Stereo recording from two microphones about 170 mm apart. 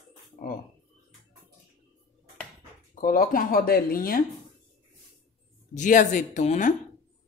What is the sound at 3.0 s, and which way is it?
Speech, 55° left (ahead or behind).